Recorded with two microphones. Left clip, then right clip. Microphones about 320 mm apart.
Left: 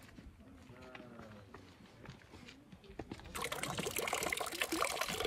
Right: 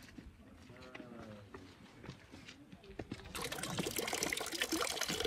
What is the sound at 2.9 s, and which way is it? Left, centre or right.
Liquid, left.